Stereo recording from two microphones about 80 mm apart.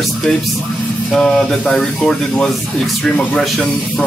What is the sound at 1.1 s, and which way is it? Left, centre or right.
Speech, centre.